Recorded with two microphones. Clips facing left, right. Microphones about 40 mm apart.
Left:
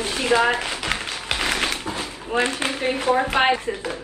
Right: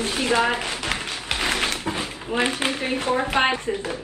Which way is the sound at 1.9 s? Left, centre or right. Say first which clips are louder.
Left 3 dB; right.